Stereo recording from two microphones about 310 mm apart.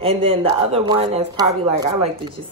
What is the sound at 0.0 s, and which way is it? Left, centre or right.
Speech, centre.